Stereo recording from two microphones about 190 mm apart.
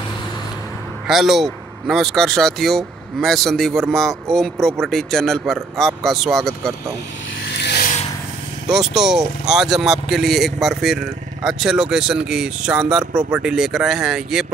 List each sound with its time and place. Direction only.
1.0 s speech: centre (ahead or behind)
7.4 s vehicle: 60° left (ahead or behind)
8.6 s speech: centre (ahead or behind)